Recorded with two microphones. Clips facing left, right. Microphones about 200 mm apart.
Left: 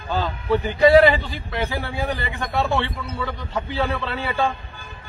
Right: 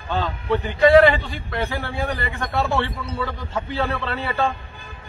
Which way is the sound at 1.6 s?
Centre (ahead or behind).